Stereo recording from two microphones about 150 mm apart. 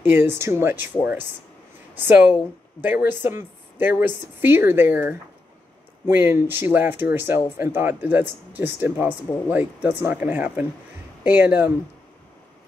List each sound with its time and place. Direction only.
0.0 s speech: 15° right (ahead or behind)
2.0 s speech: 15° right (ahead or behind)